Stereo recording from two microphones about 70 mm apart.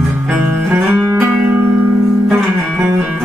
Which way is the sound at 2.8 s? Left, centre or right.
Right.